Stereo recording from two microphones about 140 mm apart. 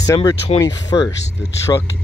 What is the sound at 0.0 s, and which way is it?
Speech, 25° left (ahead or behind).